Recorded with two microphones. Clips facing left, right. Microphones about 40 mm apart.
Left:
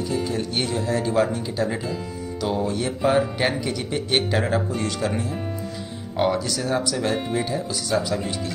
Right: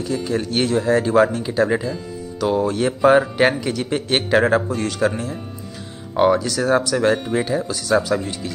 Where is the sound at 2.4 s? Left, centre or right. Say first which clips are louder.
Right 5 dB; centre.